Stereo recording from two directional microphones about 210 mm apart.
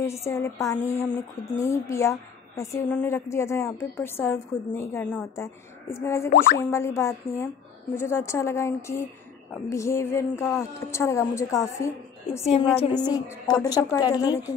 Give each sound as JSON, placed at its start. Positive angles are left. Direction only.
{"t": 0.0, "sound": "a woman's voice", "side_deg": 15}
{"t": 13.0, "sound": "a woman's voice", "side_deg": 20}